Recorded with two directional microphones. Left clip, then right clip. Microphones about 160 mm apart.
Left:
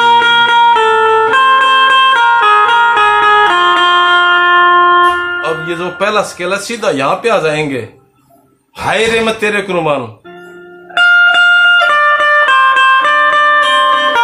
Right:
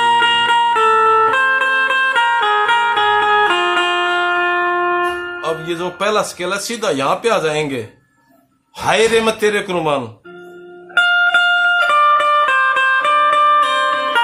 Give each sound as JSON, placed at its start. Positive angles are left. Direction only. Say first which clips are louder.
{"t": 0.0, "sound": "music", "louder": "left 5 dB", "side_deg": 30}
{"t": 5.7, "sound": "speech", "louder": "left 4 dB", "side_deg": -35}
{"t": 11.0, "sound": "music", "louder": "left 6 dB", "side_deg": 30}